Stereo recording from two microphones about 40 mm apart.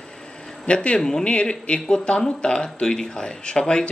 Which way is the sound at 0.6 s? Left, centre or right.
Left.